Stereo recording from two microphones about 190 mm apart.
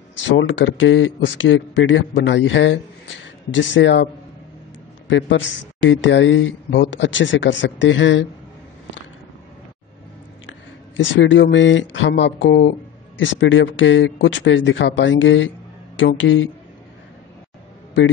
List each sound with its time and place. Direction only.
0.4 s a man's voice: 80° left
5.1 s a man's voice: 85° left
11.0 s a man's voice: 75° left (ahead or behind)